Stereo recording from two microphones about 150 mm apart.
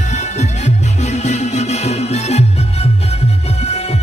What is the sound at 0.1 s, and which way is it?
Music, 50° left (ahead or behind).